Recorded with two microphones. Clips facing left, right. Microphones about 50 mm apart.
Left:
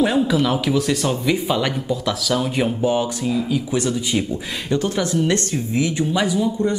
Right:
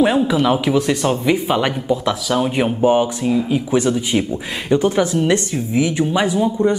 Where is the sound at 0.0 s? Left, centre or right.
Centre.